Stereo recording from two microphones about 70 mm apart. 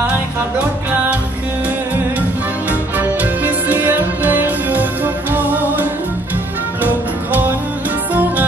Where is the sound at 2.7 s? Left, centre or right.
Right.